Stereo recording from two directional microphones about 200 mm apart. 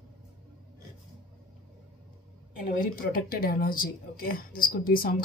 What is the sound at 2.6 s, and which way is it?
Speech, 40° left (ahead or behind).